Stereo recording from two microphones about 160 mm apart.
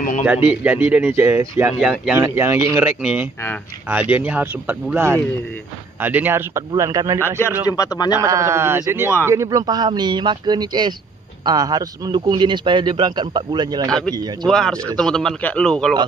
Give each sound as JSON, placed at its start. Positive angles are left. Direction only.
{"t": 0.2, "sound": "speech", "side_deg": -10}
{"t": 1.8, "sound": "speech", "side_deg": -5}
{"t": 3.0, "sound": "a man's voice", "side_deg": -5}
{"t": 7.2, "sound": "a man's voice", "side_deg": 15}
{"t": 8.2, "sound": "a man's voice", "side_deg": -20}
{"t": 13.8, "sound": "speech", "side_deg": 5}